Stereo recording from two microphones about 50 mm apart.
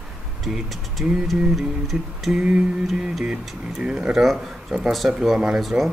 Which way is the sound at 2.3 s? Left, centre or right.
Centre.